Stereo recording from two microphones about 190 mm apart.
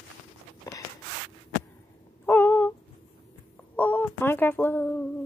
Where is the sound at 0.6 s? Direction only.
15° left (ahead or behind).